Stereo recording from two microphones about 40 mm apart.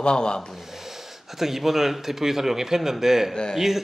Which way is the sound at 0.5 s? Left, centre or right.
Centre.